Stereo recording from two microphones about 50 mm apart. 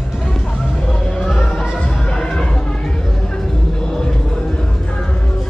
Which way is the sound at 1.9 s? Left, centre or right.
Centre.